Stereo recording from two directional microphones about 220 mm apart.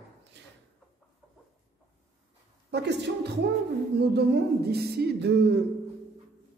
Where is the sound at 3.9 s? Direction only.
50° right (ahead or behind).